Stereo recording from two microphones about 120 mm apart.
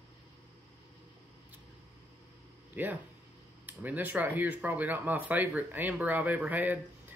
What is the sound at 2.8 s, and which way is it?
Speech, 15° right (ahead or behind).